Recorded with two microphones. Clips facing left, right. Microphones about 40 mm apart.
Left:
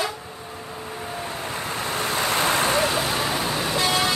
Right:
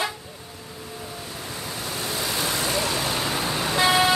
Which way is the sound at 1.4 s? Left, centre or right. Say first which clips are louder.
Left 4 dB; left.